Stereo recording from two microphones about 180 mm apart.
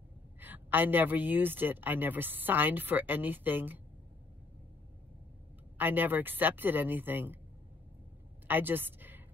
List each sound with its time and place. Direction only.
0.4 s a woman's voice: 10° right (ahead or behind)
5.8 s a woman's voice: 10° right (ahead or behind)
8.5 s a sound: 10° right (ahead or behind)